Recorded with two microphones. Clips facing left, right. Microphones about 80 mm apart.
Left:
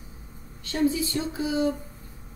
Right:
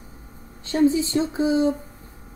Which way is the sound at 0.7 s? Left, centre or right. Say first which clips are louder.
Right 5 dB; right.